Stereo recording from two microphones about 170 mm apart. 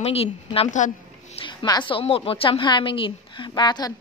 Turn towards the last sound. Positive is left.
turn(degrees=25)  # may be behind; listen again after turning